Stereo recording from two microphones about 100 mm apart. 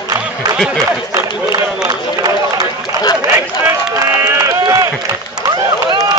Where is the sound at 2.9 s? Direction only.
40° right (ahead or behind).